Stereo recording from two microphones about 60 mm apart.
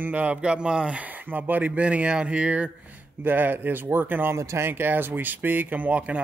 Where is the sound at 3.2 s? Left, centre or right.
Right.